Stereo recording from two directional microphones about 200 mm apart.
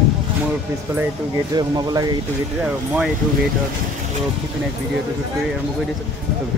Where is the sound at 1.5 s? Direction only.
20° right (ahead or behind).